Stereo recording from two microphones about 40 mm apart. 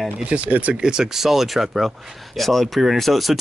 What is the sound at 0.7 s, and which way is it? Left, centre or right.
Speech, centre.